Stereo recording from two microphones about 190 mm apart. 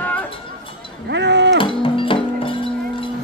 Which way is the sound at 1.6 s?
25° left (ahead or behind).